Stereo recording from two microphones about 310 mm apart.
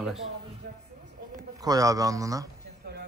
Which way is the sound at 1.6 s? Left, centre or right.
Centre.